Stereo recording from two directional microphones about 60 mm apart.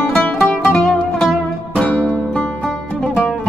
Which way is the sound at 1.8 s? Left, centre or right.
Left.